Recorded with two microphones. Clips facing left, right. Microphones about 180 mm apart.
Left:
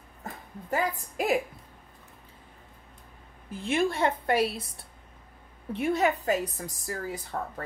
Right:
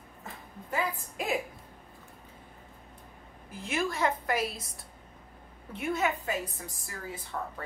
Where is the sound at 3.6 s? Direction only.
30° left (ahead or behind).